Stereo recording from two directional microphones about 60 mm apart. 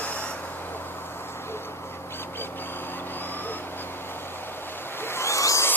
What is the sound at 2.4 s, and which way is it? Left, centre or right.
Vehicle, left.